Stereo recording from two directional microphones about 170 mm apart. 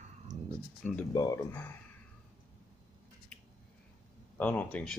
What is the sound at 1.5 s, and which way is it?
Speech, 10° left (ahead or behind).